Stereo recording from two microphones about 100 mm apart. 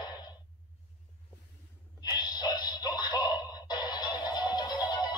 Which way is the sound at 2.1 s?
45° left (ahead or behind).